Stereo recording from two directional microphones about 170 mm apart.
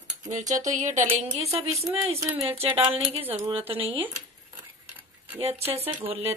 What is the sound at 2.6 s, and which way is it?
Speech, 35° right (ahead or behind).